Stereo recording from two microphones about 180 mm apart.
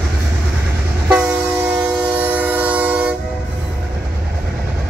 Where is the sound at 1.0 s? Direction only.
5° right (ahead or behind).